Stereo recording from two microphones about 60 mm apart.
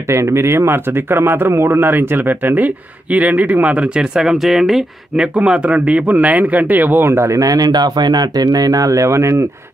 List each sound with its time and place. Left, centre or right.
0.1 s speech: right
7.1 s speech: right
7.3 s speech: right